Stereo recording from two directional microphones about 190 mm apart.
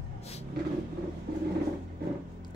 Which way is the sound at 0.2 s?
35° left (ahead or behind).